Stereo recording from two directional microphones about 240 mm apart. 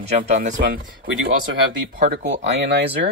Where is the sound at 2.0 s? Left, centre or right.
Right.